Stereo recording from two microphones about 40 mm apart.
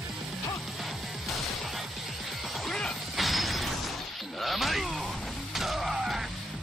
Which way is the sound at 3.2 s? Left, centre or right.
Centre.